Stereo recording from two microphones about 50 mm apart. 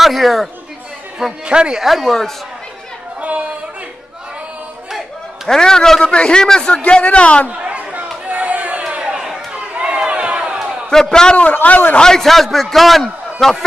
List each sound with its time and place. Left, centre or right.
0.0 s chatter: centre
1.4 s speech: centre
1.9 s a man's voice: centre
3.2 s chatter: right
5.5 s a man's voice: centre
7.4 s a sound: right
8.8 s a sound: centre
10.9 s a man's voice: centre
11.6 s a man's voice: left
12.0 s a man's voice: centre